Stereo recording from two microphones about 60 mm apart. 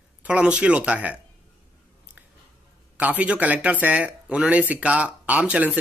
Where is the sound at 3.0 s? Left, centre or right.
Right.